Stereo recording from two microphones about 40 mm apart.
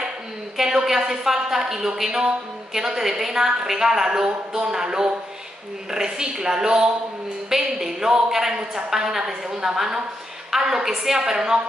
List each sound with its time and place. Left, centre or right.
0.6 s a woman's voice: centre